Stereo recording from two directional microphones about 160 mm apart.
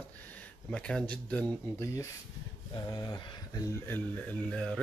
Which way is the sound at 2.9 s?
25° left (ahead or behind).